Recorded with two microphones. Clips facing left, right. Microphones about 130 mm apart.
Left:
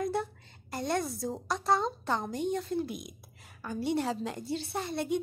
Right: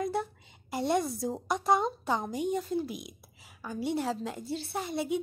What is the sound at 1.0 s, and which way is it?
A woman's voice, 5° right (ahead or behind).